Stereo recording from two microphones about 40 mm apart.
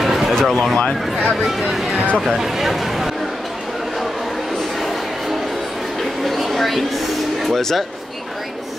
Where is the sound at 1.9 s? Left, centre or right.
Right.